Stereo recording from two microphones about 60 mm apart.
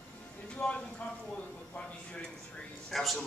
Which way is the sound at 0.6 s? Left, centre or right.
Centre.